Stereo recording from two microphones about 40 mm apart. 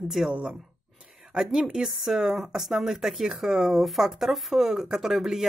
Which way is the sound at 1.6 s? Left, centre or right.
Centre.